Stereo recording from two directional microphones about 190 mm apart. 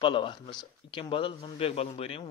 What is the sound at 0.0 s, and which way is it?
Speech, 25° left (ahead or behind).